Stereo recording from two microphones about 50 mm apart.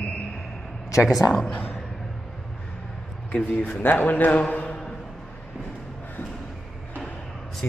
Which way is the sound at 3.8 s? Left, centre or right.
Left.